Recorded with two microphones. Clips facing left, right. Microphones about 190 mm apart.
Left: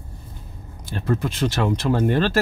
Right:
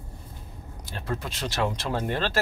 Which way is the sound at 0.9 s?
50° left (ahead or behind).